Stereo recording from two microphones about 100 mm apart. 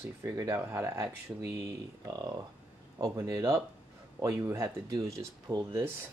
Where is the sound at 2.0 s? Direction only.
45° right (ahead or behind).